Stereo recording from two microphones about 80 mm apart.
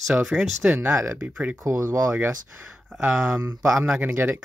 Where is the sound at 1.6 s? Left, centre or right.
Right.